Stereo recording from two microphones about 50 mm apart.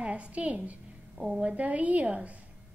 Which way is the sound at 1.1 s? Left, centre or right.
Centre.